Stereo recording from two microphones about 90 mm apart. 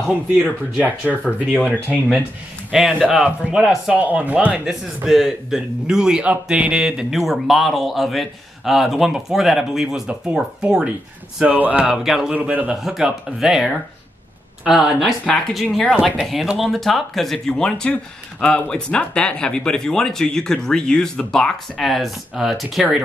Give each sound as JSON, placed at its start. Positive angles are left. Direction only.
{"t": 0.8, "sound": "speech", "side_deg": -20}
{"t": 1.6, "sound": "speech", "side_deg": 15}
{"t": 2.7, "sound": "speech", "side_deg": -5}
{"t": 12.4, "sound": "speech", "side_deg": -15}
{"t": 12.8, "sound": "speech", "side_deg": -5}
{"t": 15.2, "sound": "speech", "side_deg": 5}